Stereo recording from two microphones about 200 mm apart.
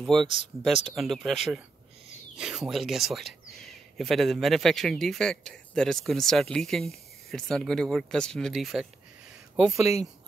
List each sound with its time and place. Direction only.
0.0 s speech: centre (ahead or behind)